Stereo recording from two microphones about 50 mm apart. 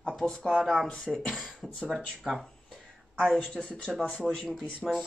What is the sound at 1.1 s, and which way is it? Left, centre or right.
Speech, centre.